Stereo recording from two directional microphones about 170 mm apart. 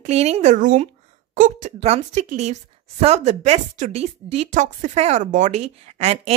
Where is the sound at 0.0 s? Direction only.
40° right (ahead or behind).